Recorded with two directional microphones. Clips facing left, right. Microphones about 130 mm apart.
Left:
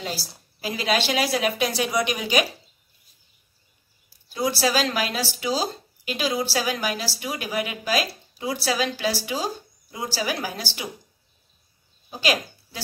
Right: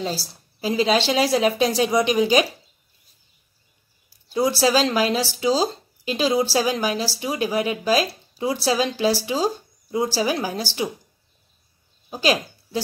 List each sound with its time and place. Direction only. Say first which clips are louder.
0.0 s a woman's voice: right 5 dB; 30° right (ahead or behind)
4.3 s speech: right 4 dB; 25° right (ahead or behind)
12.2 s speech: right 4 dB; 30° right (ahead or behind)